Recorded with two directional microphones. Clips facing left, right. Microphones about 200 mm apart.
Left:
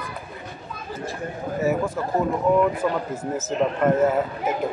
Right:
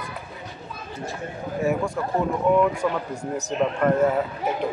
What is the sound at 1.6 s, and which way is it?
Speech, 5° left (ahead or behind).